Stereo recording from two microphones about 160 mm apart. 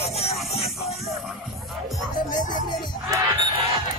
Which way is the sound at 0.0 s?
40° left (ahead or behind).